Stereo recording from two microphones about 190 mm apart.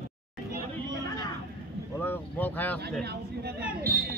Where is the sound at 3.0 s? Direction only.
60° right (ahead or behind).